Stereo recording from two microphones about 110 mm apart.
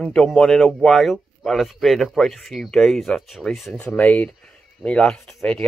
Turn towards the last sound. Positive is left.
turn(degrees=5)  # may be behind; listen again after turning